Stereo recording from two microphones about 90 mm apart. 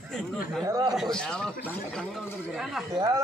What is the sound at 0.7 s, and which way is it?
Speech, 40° right (ahead or behind).